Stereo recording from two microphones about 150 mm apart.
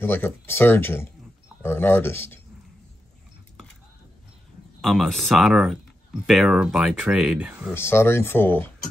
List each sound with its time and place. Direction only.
0.0 s speech: 15° left (ahead or behind)
4.8 s speech: centre (ahead or behind)
7.7 s speech: 15° left (ahead or behind)